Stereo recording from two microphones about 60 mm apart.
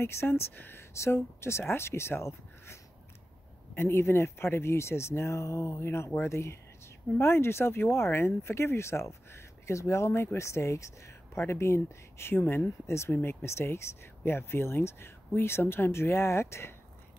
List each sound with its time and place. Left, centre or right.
0.0 s speech: left
13.1 s speech: left